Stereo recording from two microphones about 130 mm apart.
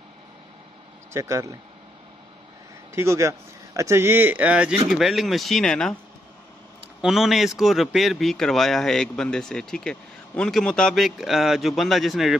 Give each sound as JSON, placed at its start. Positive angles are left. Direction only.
{"t": 1.1, "sound": "speech", "side_deg": -25}
{"t": 2.9, "sound": "speech", "side_deg": -20}
{"t": 7.0, "sound": "speech", "side_deg": -5}